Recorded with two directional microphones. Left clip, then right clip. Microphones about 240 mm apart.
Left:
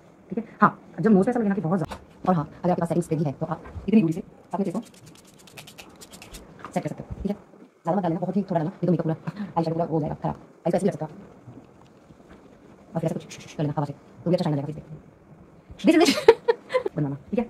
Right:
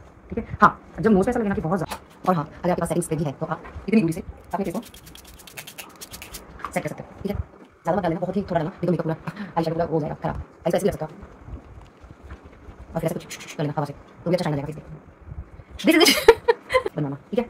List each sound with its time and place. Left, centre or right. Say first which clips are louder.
0.3 s a woman's voice: right 4 dB; centre
5.6 s a sound: right 5 dB; centre
6.7 s a woman's voice: right 1 dB; centre
12.9 s a man's voice: right 2 dB; centre
15.8 s a sound: right 2 dB; centre
17.0 s speech: right 2 dB; centre